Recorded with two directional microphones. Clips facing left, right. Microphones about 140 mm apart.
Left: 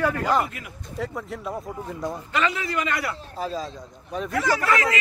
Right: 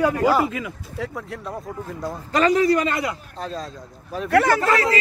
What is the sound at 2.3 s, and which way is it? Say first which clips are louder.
Speech: right 11 dB; 40° right (ahead or behind).